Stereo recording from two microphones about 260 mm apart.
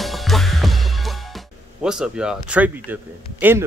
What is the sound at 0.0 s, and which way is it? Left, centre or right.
Music, centre.